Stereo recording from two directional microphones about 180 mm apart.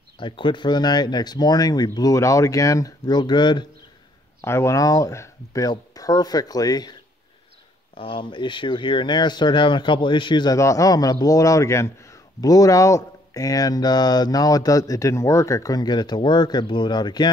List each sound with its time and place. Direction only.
0.2 s speech: 25° left (ahead or behind)